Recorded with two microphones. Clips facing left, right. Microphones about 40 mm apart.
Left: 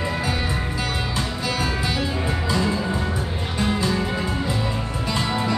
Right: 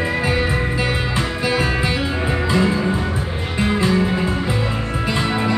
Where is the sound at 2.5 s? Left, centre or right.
Right.